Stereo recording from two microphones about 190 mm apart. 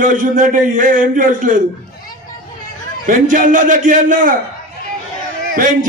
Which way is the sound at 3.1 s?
45° right (ahead or behind).